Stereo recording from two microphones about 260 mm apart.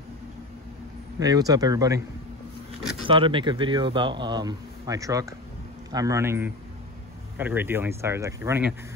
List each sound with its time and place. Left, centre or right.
1.2 s speech: centre
3.0 s speech: centre